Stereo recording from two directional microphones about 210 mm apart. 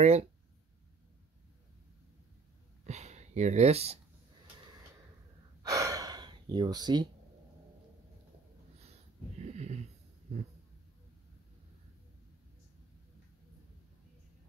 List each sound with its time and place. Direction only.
0.0 s speech: 30° right (ahead or behind)
2.9 s speech: 35° right (ahead or behind)
5.6 s gasp: 15° right (ahead or behind)
9.5 s sniff: 30° right (ahead or behind)